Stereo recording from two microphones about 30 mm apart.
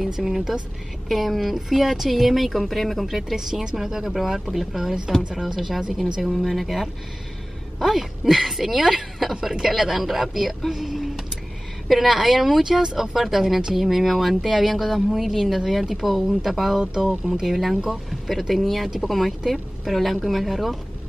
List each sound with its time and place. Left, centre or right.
0.2 s a woman's voice: centre
3.7 s speech: centre
6.3 s a woman's voice: centre
12.6 s speech: centre
18.5 s a woman's voice: centre